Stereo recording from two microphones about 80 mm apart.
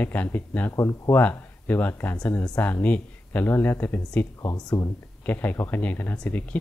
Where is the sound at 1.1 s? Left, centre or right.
Left.